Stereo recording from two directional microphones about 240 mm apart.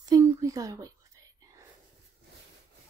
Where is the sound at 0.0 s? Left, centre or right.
Centre.